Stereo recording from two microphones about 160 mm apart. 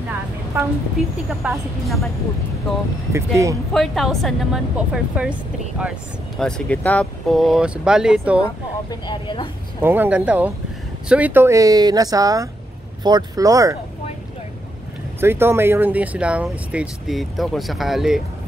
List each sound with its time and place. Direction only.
0.5 s speech: 15° right (ahead or behind)
1.0 s speech: 5° right (ahead or behind)
3.1 s speech: 20° right (ahead or behind)
3.7 s speech: centre (ahead or behind)
9.0 s speech: 30° left (ahead or behind)
9.8 s speech: 15° right (ahead or behind)
15.1 s speech: 15° right (ahead or behind)